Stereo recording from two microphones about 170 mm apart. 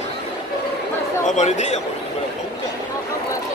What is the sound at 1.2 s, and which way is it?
Speech, 45° left (ahead or behind).